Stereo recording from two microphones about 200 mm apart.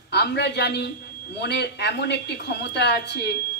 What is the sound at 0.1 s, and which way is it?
A woman's voice, 55° left (ahead or behind).